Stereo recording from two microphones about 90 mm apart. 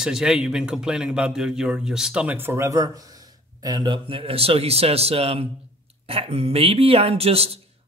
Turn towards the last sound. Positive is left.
turn(degrees=-90)